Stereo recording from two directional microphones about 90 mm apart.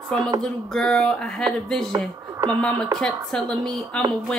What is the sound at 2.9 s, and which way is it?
A woman's voice, 10° left (ahead or behind).